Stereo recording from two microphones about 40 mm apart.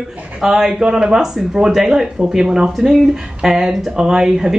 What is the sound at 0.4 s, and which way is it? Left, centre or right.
A woman's voice, centre.